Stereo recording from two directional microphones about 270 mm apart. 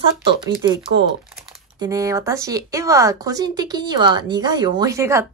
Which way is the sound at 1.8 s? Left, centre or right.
Centre.